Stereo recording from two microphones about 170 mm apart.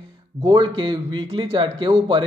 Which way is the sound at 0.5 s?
25° right (ahead or behind).